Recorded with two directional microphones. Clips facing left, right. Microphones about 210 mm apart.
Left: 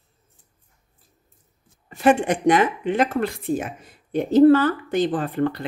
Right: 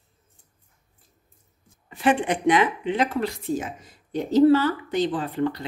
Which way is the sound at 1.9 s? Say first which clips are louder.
Left 4 dB; 45° left (ahead or behind).